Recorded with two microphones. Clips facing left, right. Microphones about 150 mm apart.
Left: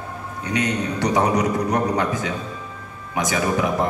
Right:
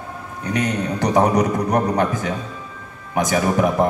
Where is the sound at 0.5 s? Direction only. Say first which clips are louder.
Right 1 dB; 50° right (ahead or behind).